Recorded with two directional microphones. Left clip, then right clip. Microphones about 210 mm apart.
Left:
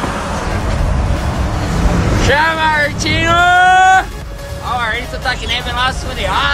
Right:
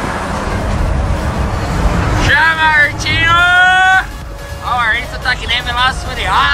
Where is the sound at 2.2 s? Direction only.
25° left (ahead or behind).